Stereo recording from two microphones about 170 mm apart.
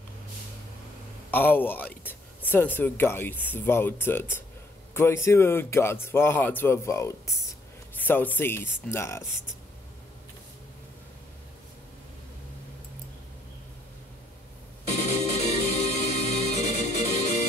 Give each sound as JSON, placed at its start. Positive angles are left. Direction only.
{"t": 1.3, "sound": "speech", "side_deg": 10}
{"t": 14.9, "sound": "music", "side_deg": 40}